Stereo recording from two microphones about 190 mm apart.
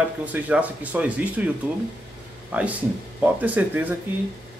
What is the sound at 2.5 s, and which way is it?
Speech, 5° right (ahead or behind).